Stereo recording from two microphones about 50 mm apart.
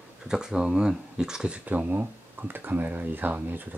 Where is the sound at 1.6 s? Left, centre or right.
Right.